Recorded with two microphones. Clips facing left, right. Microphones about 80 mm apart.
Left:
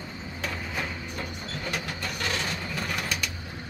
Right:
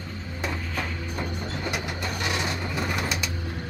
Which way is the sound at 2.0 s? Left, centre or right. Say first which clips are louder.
Right 3 dB; centre.